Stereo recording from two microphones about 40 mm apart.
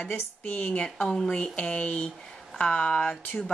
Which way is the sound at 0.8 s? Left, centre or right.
Centre.